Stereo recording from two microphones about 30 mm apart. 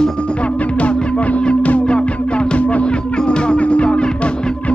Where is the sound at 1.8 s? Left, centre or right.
Left.